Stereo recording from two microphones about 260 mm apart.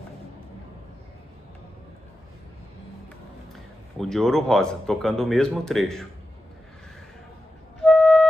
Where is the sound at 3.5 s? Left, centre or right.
Centre.